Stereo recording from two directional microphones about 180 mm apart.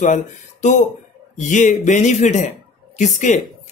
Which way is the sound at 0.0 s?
45° left (ahead or behind).